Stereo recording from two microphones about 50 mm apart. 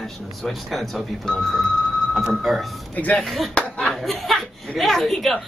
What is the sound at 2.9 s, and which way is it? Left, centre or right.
Speech, left.